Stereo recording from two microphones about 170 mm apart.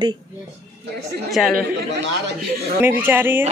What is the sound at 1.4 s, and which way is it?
Speech, centre (ahead or behind).